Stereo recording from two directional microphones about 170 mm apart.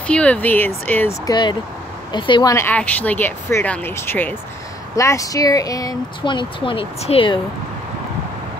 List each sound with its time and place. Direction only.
0.0 s speech: 5° left (ahead or behind)
1.2 s speech: 25° left (ahead or behind)
2.5 s speech: 10° left (ahead or behind); by 7.3 s 35° left (ahead or behind)